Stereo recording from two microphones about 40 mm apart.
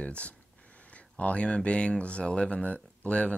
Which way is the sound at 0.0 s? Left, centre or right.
Left.